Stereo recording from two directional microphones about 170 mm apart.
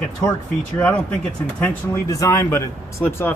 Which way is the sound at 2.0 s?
20° left (ahead or behind).